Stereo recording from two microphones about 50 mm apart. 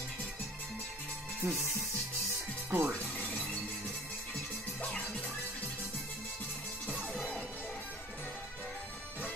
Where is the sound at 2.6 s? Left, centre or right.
Right.